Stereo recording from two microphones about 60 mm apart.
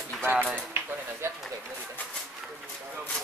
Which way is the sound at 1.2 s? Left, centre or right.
Right.